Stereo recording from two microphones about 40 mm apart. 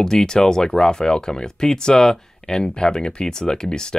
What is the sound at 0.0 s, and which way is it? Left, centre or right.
Speech, centre.